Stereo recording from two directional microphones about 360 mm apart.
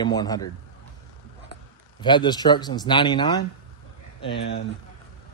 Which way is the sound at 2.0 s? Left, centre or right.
Centre.